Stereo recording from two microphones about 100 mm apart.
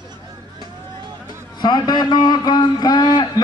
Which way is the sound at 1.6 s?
50° left (ahead or behind).